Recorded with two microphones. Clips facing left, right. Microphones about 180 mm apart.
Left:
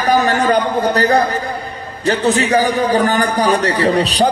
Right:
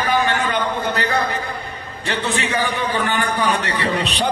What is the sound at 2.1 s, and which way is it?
A man's voice, 40° left (ahead or behind).